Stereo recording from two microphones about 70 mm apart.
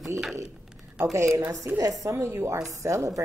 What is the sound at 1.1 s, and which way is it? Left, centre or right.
A woman's voice, right.